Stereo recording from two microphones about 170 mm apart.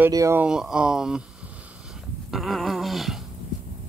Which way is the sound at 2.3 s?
Centre (ahead or behind).